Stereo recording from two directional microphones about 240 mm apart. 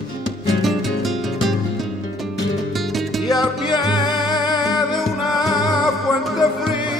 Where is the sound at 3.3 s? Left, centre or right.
Centre.